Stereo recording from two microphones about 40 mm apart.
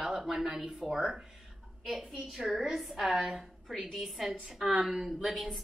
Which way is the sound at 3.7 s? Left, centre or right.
Centre.